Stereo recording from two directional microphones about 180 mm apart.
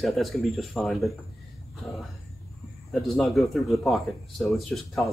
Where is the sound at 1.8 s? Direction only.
Centre (ahead or behind).